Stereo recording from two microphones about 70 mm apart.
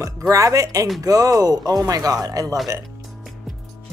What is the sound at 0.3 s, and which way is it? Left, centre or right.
Speech, right.